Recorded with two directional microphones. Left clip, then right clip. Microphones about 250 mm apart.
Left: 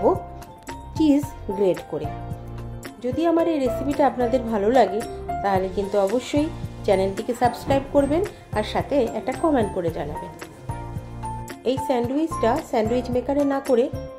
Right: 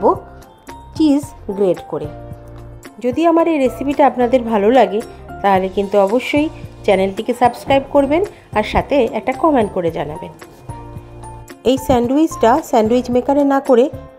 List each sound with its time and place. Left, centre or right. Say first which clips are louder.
0.9 s a child's voice: right 5 dB; centre
3.0 s a woman's voice: right 8 dB; right
11.6 s speech: right 8 dB; right